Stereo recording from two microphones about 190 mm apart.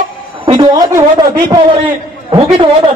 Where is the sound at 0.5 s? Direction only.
20° right (ahead or behind).